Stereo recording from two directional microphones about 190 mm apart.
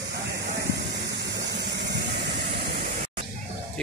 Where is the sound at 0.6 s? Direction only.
60° right (ahead or behind).